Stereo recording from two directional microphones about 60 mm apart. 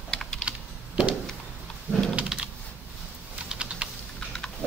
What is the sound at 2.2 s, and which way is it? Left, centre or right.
Typing, centre.